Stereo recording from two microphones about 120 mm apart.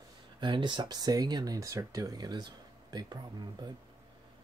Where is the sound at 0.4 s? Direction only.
40° right (ahead or behind).